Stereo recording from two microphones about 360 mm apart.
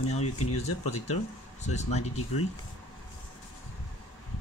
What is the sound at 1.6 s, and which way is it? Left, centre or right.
Speech, centre.